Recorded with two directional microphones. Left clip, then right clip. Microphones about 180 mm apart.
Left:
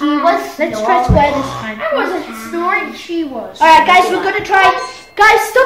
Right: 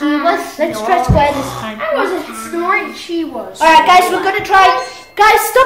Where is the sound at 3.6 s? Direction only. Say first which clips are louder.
Even; 15° right (ahead or behind).